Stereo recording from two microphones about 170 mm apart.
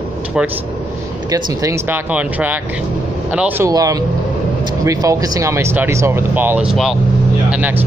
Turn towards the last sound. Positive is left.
turn(degrees=-10)  # may be behind; listen again after turning